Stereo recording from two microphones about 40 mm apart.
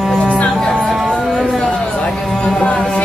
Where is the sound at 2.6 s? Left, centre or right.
Left.